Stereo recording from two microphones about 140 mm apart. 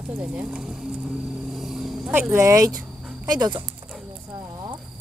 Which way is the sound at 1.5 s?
Centre (ahead or behind).